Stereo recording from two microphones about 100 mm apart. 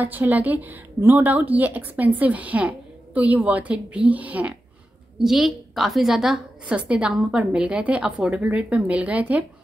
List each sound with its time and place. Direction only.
0.0 s a woman's voice: 20° right (ahead or behind)
5.2 s a woman's voice: 5° right (ahead or behind)